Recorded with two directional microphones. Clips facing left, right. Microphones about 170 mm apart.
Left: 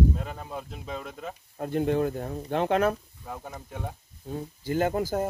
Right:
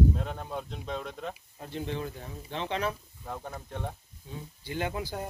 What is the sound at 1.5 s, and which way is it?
Speech, 50° left (ahead or behind).